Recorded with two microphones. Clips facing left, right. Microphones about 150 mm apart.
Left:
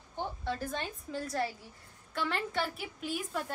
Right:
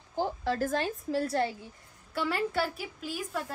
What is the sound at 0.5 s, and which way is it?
Speech, 90° right.